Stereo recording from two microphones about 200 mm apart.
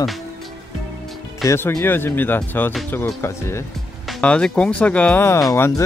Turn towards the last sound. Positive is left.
turn(degrees=15)  # may be behind; listen again after turning